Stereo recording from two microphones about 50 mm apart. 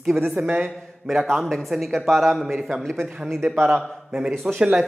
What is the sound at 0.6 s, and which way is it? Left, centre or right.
Speech, centre.